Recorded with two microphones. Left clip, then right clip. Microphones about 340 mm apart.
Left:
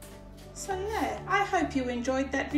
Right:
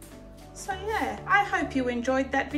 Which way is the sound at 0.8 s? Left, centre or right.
Centre.